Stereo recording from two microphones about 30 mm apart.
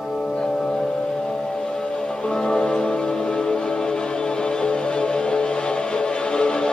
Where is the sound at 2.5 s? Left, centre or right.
Left.